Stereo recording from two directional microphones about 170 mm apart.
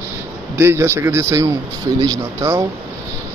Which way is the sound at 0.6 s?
15° right (ahead or behind).